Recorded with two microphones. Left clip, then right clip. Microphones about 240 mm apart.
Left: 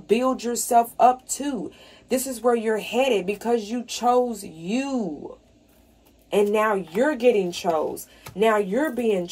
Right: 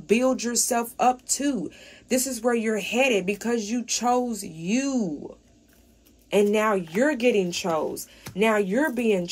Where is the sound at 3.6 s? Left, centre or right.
Centre.